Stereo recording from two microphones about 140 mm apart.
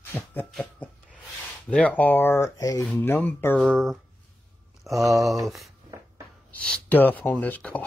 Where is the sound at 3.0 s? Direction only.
15° left (ahead or behind).